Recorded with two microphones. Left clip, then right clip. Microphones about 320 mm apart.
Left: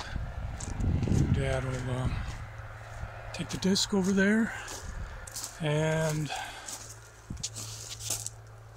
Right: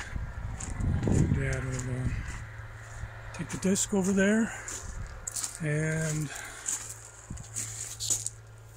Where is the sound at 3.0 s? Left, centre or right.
Left.